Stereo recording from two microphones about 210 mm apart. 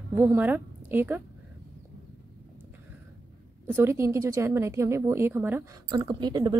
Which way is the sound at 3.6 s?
10° right (ahead or behind).